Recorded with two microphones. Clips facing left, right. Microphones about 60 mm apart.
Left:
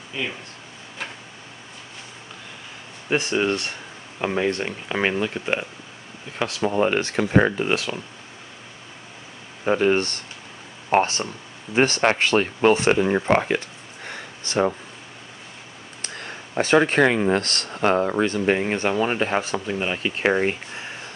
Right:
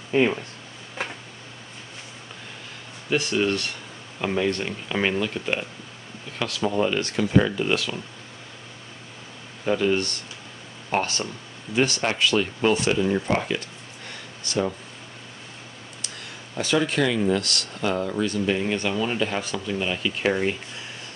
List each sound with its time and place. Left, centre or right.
0.1 s speech: right
3.1 s speech: left
7.6 s speech: left
9.7 s speech: left
13.6 s a sound: left
16.0 s speech: left